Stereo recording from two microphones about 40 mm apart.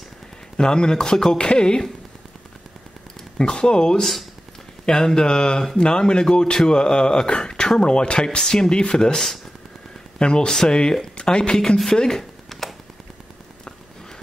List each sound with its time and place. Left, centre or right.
0.6 s speech: centre
1.4 s speech: left
3.3 s speech: left
4.0 s speech: centre
4.8 s speech: centre